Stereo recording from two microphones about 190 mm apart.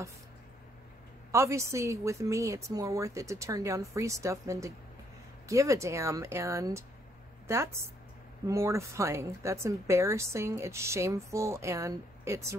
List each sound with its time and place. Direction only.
1.3 s speech: 15° right (ahead or behind)